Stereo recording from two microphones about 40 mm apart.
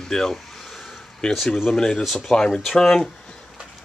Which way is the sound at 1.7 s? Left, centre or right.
Centre.